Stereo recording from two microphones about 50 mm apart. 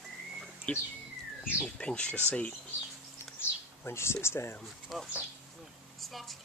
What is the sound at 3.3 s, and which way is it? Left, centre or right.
Bird, left.